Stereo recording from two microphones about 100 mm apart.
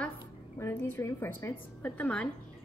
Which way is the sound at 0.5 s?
25° left (ahead or behind).